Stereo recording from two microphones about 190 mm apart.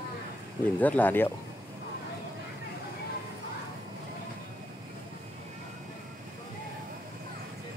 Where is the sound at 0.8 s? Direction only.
10° left (ahead or behind).